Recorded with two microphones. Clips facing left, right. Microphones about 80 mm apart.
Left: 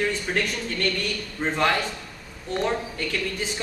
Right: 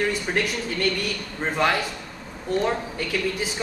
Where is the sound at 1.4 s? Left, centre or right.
Centre.